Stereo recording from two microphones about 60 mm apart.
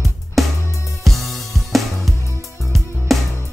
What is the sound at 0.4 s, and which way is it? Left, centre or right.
Music, centre.